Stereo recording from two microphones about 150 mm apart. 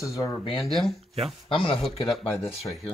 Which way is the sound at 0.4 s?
35° left (ahead or behind).